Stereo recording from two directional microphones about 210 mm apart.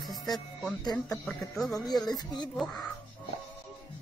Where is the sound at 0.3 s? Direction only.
Centre (ahead or behind).